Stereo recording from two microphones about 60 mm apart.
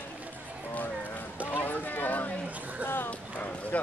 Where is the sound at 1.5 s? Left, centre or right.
Left.